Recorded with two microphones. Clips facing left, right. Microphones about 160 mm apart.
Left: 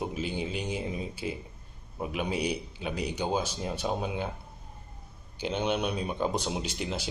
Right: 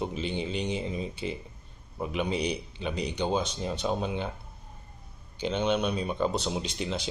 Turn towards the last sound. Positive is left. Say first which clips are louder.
# right 1 dB
turn(degrees=10)  # may be behind; listen again after turning